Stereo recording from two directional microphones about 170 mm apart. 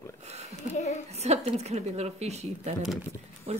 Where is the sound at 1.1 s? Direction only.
40° right (ahead or behind).